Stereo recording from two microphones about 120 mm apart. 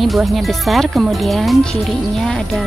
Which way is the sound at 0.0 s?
Centre (ahead or behind).